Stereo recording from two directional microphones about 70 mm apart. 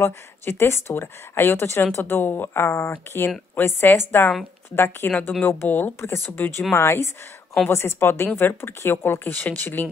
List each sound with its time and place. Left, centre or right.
0.0 s speech: left